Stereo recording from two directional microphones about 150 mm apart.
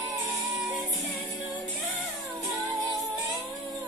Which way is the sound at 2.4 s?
20° right (ahead or behind).